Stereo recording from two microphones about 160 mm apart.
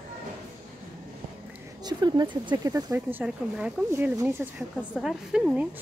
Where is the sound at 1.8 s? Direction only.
25° right (ahead or behind).